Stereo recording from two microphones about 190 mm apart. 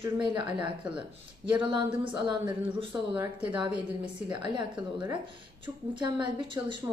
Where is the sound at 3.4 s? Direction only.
25° right (ahead or behind).